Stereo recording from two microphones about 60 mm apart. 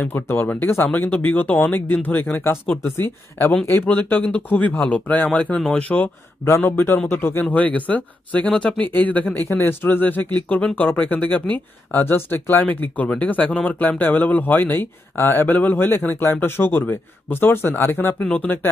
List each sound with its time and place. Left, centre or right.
0.0 s speech: left
2.3 s speech: left
2.6 s speech: left
6.6 s speech: left
7.5 s speech: left